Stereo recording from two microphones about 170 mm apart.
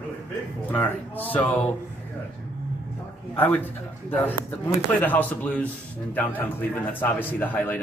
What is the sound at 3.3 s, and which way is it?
Speech, 10° left (ahead or behind).